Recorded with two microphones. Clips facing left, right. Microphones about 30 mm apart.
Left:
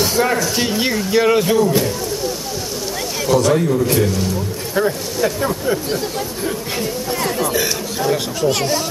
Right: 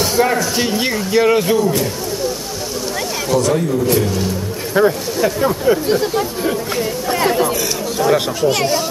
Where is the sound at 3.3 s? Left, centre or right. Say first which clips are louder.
Left 1 dB; centre.